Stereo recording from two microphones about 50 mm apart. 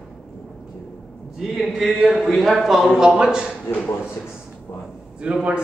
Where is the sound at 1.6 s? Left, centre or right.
Centre.